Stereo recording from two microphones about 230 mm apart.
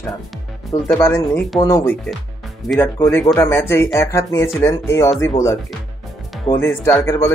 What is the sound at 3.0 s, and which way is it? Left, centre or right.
Speech, centre.